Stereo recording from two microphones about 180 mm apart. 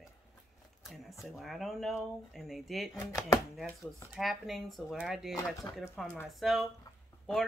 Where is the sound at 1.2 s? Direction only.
Centre (ahead or behind).